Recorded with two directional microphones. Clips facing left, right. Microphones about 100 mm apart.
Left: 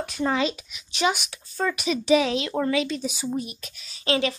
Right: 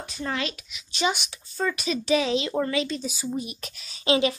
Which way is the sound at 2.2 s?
Centre (ahead or behind).